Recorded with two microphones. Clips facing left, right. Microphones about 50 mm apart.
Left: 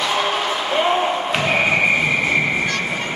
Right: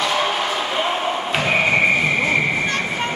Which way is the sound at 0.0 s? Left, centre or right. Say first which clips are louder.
Even; centre.